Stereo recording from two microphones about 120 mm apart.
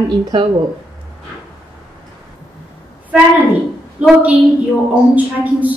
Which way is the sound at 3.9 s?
10° right (ahead or behind).